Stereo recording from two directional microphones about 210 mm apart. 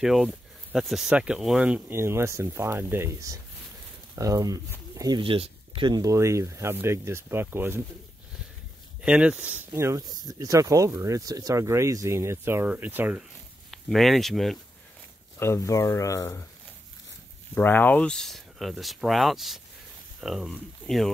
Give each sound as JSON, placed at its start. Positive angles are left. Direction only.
{"t": 0.0, "sound": "speech", "side_deg": 0}
{"t": 9.0, "sound": "speech", "side_deg": -5}
{"t": 15.3, "sound": "speech", "side_deg": 10}
{"t": 17.6, "sound": "speech", "side_deg": 10}